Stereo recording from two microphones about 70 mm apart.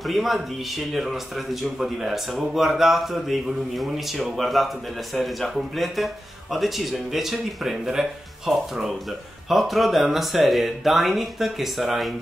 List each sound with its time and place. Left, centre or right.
0.0 s speech: centre